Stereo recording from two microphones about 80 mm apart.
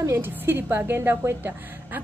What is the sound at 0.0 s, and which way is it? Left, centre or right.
A woman's voice, right.